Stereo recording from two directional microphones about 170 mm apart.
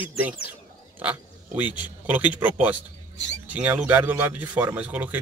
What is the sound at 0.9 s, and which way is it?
Speech, 10° right (ahead or behind).